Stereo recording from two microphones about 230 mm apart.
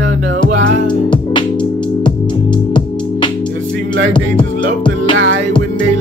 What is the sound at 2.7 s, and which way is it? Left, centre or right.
Music, left.